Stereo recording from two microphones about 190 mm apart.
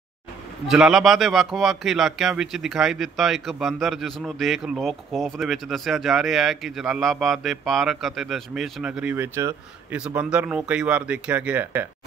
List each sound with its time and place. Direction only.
0.7 s a man's voice: centre (ahead or behind)